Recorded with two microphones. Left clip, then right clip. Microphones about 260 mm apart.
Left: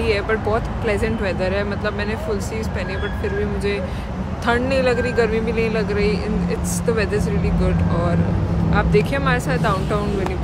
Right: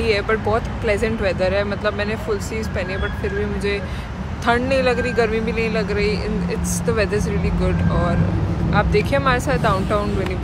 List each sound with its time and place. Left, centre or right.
0.0 s speech: centre
4.5 s speech: centre
8.7 s speech: centre